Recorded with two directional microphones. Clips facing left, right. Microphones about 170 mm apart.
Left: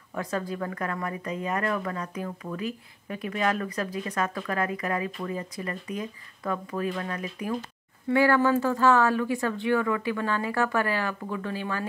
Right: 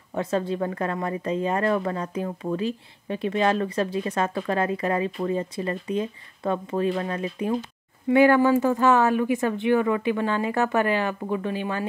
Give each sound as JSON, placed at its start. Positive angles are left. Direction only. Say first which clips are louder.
{"t": 0.1, "sound": "speech", "louder": "right 5 dB", "side_deg": -25}